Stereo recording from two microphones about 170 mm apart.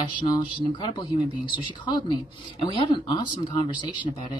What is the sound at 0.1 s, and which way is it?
Speech, 30° left (ahead or behind).